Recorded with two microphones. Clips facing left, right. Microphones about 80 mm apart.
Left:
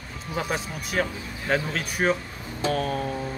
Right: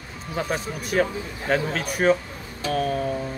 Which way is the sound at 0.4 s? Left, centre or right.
Centre.